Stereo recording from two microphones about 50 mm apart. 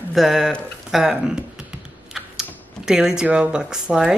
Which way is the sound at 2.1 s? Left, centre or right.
Centre.